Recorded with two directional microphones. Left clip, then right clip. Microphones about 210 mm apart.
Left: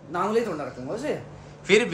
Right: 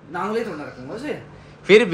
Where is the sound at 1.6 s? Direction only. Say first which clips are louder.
Right 7 dB; 10° left (ahead or behind).